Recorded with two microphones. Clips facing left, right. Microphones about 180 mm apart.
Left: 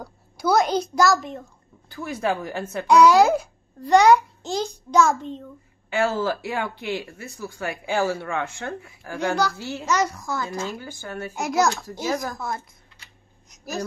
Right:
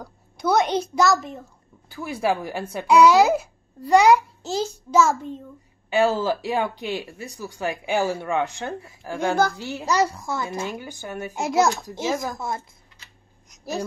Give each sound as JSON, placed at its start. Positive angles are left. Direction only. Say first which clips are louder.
{"t": 0.0, "sound": "a child's voice", "louder": "even", "side_deg": 0}
{"t": 9.8, "sound": "a child's voice", "louder": "right 2 dB", "side_deg": -30}